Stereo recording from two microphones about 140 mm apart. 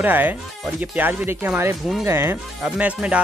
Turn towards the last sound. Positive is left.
turn(degrees=-10)  # may be behind; listen again after turning